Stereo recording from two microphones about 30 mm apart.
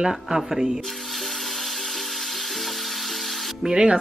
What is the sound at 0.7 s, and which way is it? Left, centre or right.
Music, centre.